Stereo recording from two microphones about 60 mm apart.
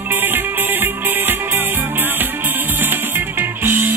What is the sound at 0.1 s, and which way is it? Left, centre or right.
Music, right.